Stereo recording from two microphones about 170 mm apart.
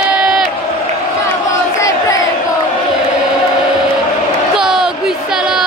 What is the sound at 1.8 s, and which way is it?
Crowd, 20° left (ahead or behind).